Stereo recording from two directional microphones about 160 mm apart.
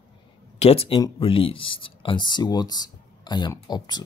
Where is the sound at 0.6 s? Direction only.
35° left (ahead or behind).